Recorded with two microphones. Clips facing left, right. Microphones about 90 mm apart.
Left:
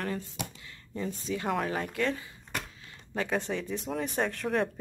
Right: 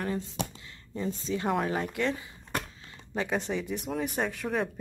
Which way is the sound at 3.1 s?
10° right (ahead or behind).